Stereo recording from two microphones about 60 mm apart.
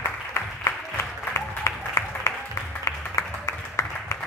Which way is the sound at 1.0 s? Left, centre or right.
Left.